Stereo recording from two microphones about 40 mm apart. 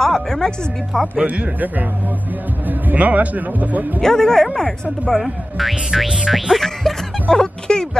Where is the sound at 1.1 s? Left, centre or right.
Right.